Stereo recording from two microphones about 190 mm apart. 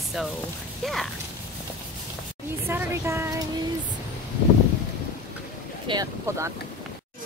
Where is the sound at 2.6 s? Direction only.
15° right (ahead or behind).